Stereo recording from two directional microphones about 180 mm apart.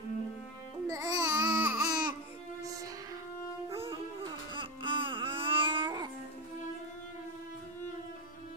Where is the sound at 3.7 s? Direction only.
30° right (ahead or behind).